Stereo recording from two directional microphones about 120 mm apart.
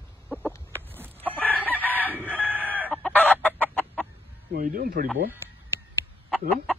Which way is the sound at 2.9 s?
10° left (ahead or behind).